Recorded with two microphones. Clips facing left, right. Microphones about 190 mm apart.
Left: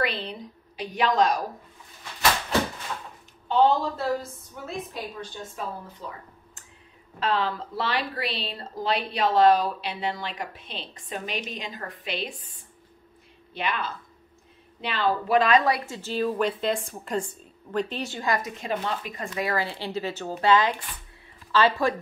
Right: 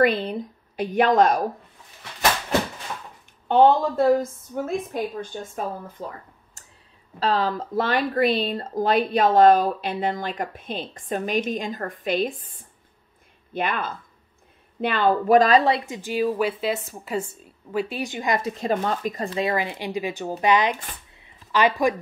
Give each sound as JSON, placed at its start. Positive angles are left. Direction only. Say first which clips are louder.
{"t": 0.0, "sound": "speech", "louder": "right 9 dB", "side_deg": -50}
{"t": 3.4, "sound": "speech", "louder": "right 4 dB", "side_deg": -55}
{"t": 18.7, "sound": "speech", "louder": "right 5 dB", "side_deg": -45}
{"t": 19.5, "sound": "speech", "louder": "right 3 dB", "side_deg": -15}